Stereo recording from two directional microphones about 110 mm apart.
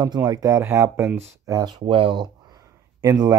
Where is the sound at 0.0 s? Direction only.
40° right (ahead or behind).